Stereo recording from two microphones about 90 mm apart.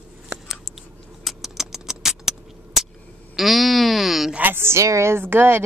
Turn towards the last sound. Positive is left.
turn(degrees=-25)  # may be behind; listen again after turning